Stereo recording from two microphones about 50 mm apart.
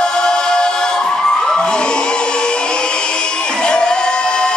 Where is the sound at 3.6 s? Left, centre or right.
Centre.